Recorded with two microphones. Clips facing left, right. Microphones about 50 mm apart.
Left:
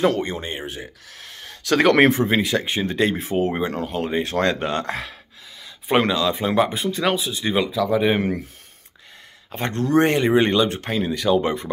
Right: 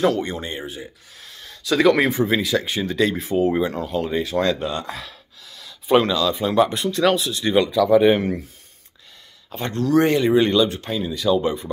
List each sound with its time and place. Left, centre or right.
0.0 s speech: left
0.7 s speech: left
2.2 s speech: left
5.6 s speech: left
6.7 s speech: centre
8.2 s speech: left
9.5 s speech: left